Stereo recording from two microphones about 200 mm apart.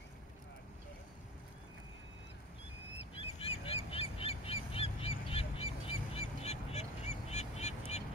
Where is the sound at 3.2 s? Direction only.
30° left (ahead or behind).